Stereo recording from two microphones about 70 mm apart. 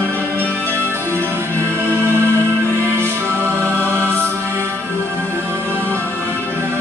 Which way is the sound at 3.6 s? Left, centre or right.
Right.